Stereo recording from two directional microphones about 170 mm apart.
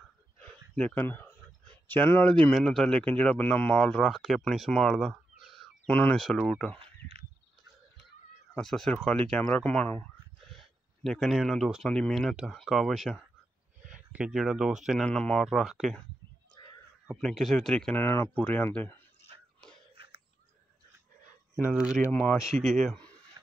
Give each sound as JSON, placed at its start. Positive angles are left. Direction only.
{"t": 0.4, "sound": "a sound", "side_deg": 5}
{"t": 1.9, "sound": "speech", "side_deg": 10}
{"t": 8.5, "sound": "speech", "side_deg": 5}
{"t": 17.1, "sound": "speech", "side_deg": 0}
{"t": 21.6, "sound": "speech", "side_deg": -5}
{"t": 22.0, "sound": "speech", "side_deg": 10}
{"t": 23.4, "sound": "shuffle", "side_deg": -15}